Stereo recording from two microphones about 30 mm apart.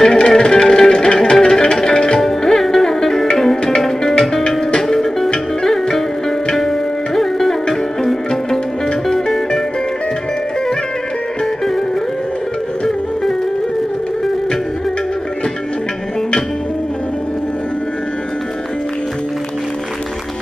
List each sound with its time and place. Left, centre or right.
0.0 s music: centre
4.8 s music: centre
5.3 s music: left
7.2 s music: centre
9.1 s music: centre